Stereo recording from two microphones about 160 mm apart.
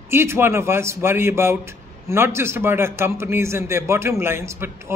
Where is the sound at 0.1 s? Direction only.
15° right (ahead or behind).